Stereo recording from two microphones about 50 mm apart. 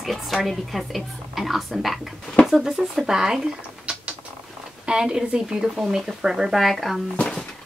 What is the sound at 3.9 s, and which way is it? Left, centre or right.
Mechanisms, right.